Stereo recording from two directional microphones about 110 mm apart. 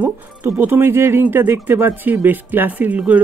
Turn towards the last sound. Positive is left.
turn(degrees=-15)  # may be behind; listen again after turning